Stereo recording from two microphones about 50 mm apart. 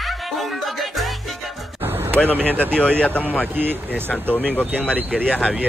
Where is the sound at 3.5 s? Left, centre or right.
Right.